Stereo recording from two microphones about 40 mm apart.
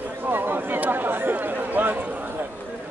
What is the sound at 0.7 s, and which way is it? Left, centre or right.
Chatter, right.